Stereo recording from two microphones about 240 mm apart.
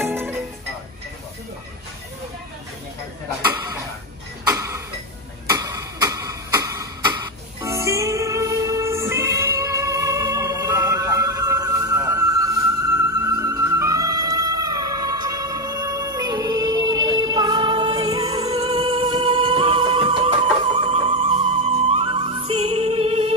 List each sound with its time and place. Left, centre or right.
0.0 s music: centre
4.5 s tick-tock: centre
7.6 s music: centre